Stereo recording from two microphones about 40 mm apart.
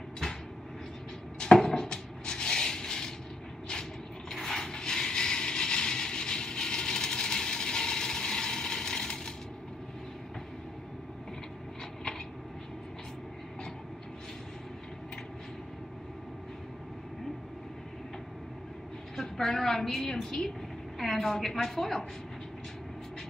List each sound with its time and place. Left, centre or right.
1.4 s a sound: centre
4.3 s mechanisms: centre
19.1 s a woman's voice: centre